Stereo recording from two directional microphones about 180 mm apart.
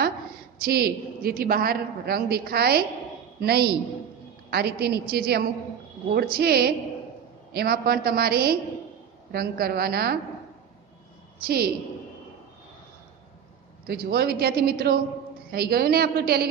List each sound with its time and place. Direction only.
0.6 s a woman's voice: 60° right (ahead or behind)
11.3 s a woman's voice: 55° right (ahead or behind)
13.8 s a woman's voice: 60° right (ahead or behind)